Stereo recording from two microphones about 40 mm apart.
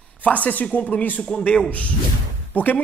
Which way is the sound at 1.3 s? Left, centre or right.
Centre.